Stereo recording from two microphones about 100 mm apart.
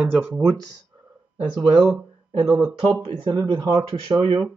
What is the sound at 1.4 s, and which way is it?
Speech, 45° right (ahead or behind).